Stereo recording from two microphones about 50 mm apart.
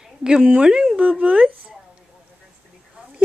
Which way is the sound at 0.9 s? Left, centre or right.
Right.